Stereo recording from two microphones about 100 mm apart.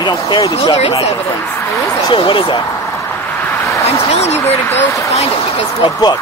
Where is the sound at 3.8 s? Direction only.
90° left.